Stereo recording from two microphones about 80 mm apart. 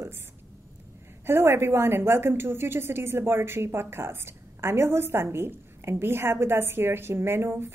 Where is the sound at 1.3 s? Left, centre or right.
Right.